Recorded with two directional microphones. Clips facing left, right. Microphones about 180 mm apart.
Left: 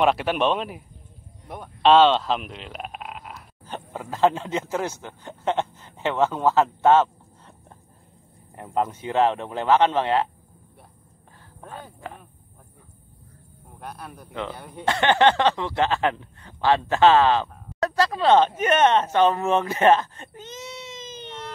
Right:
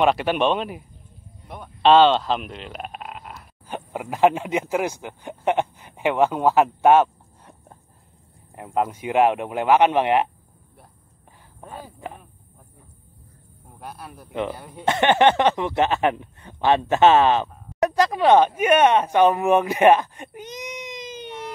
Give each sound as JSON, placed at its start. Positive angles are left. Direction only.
{"t": 0.0, "sound": "speech", "side_deg": 0}
{"t": 3.6, "sound": "speech", "side_deg": -15}
{"t": 8.5, "sound": "speech", "side_deg": -10}
{"t": 11.6, "sound": "speech", "side_deg": -5}
{"t": 13.7, "sound": "speech", "side_deg": 0}
{"t": 14.3, "sound": "speech", "side_deg": -20}
{"t": 14.6, "sound": "speech", "side_deg": 0}
{"t": 14.9, "sound": "speech", "side_deg": -20}